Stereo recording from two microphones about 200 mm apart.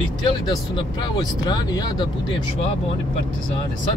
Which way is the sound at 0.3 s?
20° left (ahead or behind).